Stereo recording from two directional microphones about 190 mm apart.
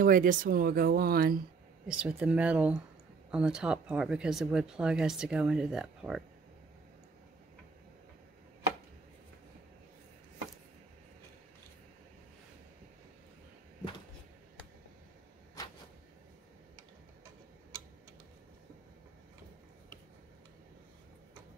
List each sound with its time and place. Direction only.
0.0 s speech: 45° right (ahead or behind)
1.9 s speech: 5° right (ahead or behind)